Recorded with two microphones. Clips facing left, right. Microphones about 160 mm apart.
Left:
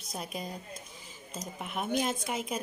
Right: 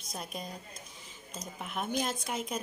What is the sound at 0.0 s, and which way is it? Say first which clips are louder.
A woman's voice: left 2 dB; centre (ahead or behind).